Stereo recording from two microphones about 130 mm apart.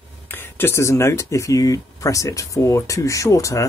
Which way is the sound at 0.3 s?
15° left (ahead or behind).